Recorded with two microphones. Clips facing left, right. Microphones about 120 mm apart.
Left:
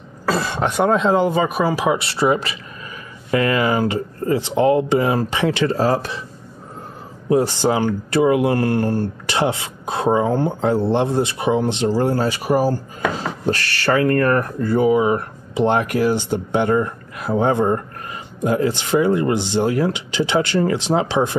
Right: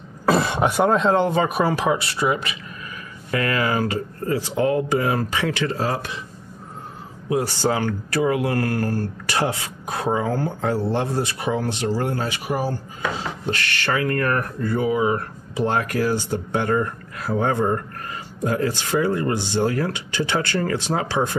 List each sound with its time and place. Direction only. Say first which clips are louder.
0.3 s speech: right 2 dB; 20° right (ahead or behind); by 2.0 s 5° left (ahead or behind)
2.0 s speech: left 4 dB; 30° left (ahead or behind)
7.2 s speech: left 5 dB; 25° left (ahead or behind)